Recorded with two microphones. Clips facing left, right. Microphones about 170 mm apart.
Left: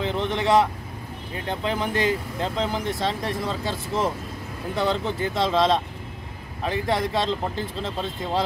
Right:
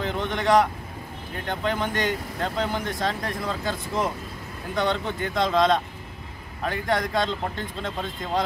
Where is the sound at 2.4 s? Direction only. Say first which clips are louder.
Even; centre (ahead or behind).